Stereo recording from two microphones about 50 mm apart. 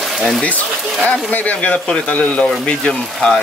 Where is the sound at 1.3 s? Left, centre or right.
Left.